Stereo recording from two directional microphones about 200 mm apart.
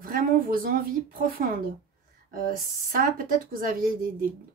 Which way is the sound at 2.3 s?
45° right (ahead or behind).